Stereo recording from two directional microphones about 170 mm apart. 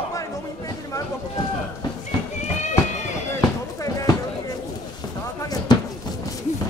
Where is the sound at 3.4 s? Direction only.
20° left (ahead or behind).